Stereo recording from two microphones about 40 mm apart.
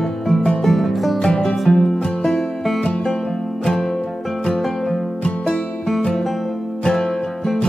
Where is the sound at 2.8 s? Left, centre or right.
Left.